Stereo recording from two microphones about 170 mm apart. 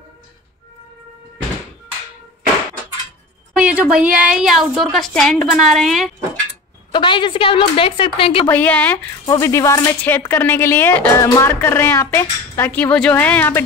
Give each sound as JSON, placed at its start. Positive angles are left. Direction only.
{"t": 3.5, "sound": "a woman's voice", "side_deg": -5}
{"t": 6.9, "sound": "a woman's voice", "side_deg": 30}
{"t": 8.5, "sound": "speech", "side_deg": 10}
{"t": 9.2, "sound": "speech", "side_deg": 20}